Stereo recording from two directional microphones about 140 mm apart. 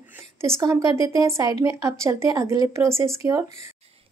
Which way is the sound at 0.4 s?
20° right (ahead or behind).